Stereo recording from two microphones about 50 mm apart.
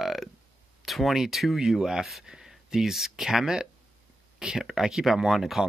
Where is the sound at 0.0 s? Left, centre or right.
Centre.